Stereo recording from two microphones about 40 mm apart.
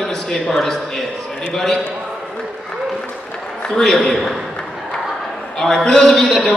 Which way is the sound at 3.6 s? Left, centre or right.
Centre.